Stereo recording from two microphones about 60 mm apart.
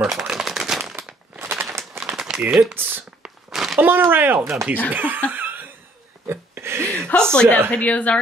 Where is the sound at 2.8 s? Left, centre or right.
Right.